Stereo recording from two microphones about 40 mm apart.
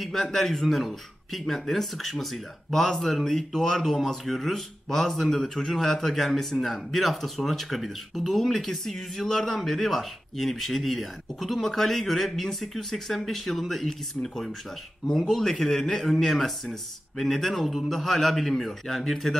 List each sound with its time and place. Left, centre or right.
0.3 s speech: centre